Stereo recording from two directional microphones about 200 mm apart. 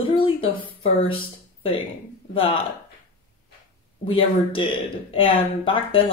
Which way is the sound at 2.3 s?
25° left (ahead or behind).